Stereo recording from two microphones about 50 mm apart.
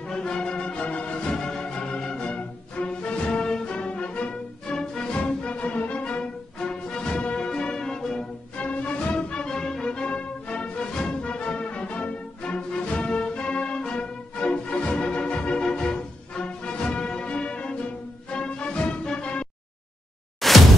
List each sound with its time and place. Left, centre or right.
0.0 s music: centre
8.5 s music: left
20.3 s a sound: centre